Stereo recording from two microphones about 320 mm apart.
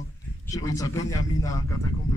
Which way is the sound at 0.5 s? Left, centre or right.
Centre.